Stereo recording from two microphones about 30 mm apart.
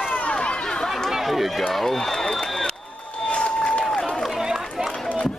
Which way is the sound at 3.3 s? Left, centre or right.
Left.